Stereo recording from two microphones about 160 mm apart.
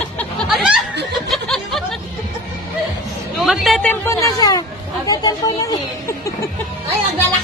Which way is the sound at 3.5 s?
Centre (ahead or behind).